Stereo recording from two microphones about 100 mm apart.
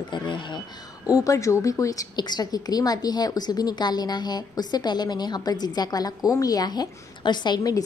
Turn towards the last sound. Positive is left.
turn(degrees=40)  # may be behind; listen again after turning